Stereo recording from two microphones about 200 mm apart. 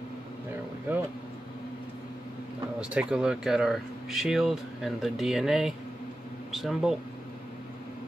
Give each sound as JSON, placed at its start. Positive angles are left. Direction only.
{"t": 0.9, "sound": "speech", "side_deg": -10}
{"t": 2.8, "sound": "speech", "side_deg": -5}